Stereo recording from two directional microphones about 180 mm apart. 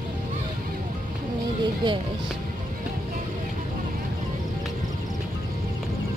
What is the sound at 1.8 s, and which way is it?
Speech, 25° right (ahead or behind).